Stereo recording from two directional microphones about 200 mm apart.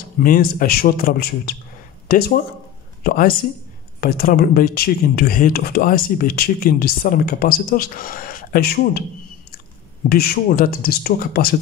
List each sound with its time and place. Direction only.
0.2 s speech: 45° left (ahead or behind)
10.0 s speech: 50° left (ahead or behind)